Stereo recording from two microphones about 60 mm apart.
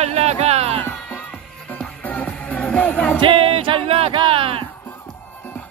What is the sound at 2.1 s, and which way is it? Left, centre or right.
Music, left.